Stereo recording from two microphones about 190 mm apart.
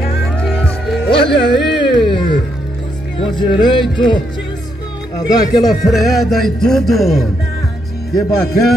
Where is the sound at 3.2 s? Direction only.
25° left (ahead or behind).